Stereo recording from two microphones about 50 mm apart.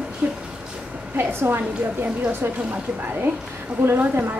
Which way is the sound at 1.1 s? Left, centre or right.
Right.